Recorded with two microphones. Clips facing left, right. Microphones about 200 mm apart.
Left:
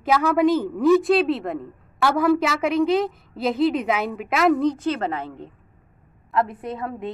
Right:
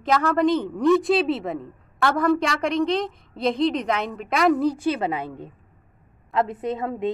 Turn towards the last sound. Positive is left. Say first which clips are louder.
# right 3 dB
turn(degrees=-20)  # may be behind; listen again after turning